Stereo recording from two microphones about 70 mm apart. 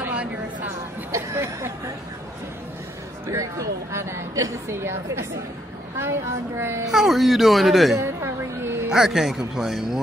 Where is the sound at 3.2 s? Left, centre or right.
Right.